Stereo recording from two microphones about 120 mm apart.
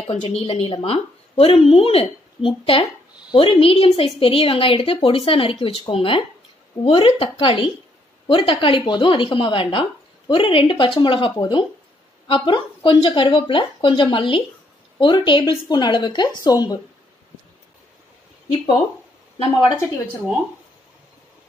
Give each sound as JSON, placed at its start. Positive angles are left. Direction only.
{"t": 0.0, "sound": "a woman's voice", "side_deg": 55}
{"t": 19.3, "sound": "a woman's voice", "side_deg": 55}